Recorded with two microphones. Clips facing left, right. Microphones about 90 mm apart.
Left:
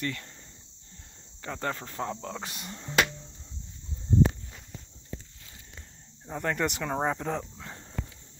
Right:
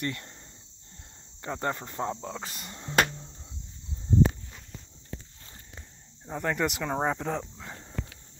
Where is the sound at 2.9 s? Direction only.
40° right (ahead or behind).